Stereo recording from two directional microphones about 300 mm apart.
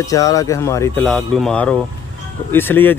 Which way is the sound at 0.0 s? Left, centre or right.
Centre.